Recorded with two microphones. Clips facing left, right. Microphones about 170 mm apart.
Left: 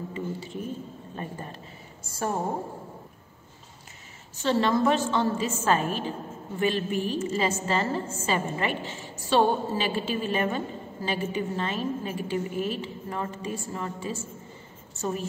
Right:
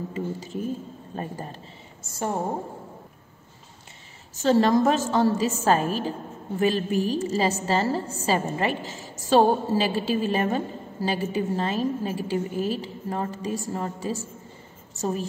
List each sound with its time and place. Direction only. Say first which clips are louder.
0.1 s a woman's voice: right 3 dB; 40° right (ahead or behind)
2.1 s a woman's voice: right 1 dB; 20° right (ahead or behind)
4.4 s a woman's voice: right 4 dB; 40° right (ahead or behind)